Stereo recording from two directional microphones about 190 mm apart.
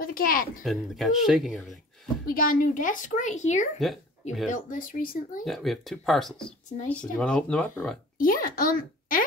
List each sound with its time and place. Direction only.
0.0 s speech: 50° left (ahead or behind)
0.7 s speech: centre (ahead or behind)
2.2 s a child's voice: 50° left (ahead or behind)
5.4 s speech: centre (ahead or behind)
8.2 s a child's voice: 50° left (ahead or behind)